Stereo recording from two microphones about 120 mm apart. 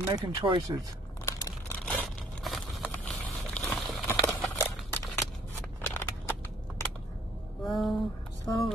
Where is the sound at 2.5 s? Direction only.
Centre (ahead or behind).